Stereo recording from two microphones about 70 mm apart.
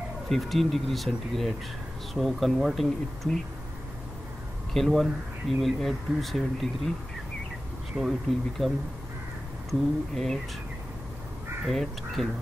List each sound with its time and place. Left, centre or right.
0.3 s speech: centre
4.7 s speech: centre
8.0 s bee: centre
8.6 s speech: centre
11.6 s speech: centre